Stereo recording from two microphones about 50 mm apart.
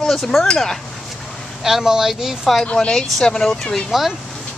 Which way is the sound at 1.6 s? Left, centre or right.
Centre.